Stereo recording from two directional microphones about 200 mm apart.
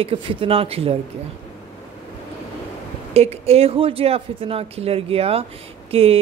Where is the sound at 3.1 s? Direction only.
30° right (ahead or behind).